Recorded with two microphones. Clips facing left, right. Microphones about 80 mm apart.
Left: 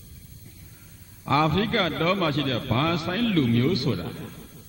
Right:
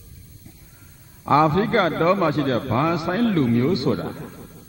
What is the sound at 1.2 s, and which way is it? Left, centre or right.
A man's voice, right.